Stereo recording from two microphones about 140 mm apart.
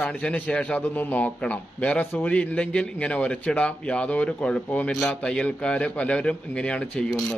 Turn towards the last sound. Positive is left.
turn(degrees=5)  # may be behind; listen again after turning